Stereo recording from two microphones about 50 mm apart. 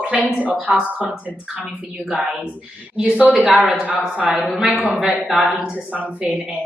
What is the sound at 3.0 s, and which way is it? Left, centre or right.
Speech, right.